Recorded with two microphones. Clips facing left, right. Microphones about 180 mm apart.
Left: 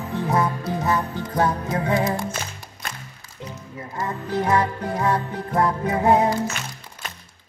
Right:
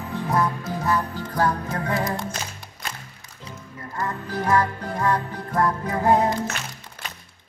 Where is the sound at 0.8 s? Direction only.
20° left (ahead or behind).